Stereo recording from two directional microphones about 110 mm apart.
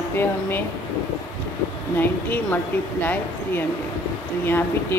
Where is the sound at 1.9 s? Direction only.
15° left (ahead or behind).